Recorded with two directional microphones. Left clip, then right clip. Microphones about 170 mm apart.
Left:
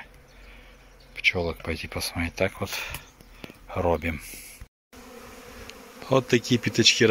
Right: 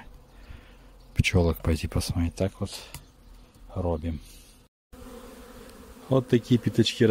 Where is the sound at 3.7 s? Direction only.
15° right (ahead or behind).